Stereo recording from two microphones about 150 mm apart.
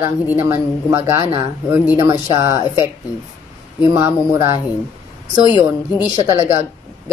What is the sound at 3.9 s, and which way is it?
Speech, 25° right (ahead or behind).